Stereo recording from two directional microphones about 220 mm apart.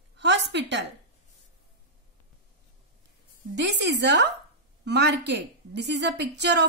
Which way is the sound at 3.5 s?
50° right (ahead or behind).